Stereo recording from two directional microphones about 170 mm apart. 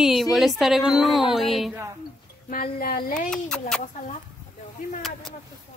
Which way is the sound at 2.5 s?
60° left (ahead or behind).